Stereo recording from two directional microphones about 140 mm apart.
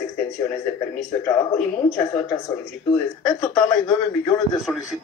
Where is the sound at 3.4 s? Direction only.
20° left (ahead or behind).